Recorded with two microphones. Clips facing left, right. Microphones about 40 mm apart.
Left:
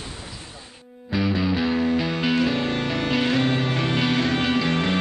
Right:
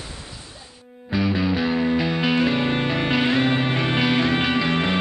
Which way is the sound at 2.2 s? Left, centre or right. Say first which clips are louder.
Right 2 dB; right.